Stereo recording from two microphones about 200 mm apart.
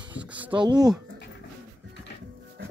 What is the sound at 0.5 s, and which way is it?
Speech, 20° right (ahead or behind).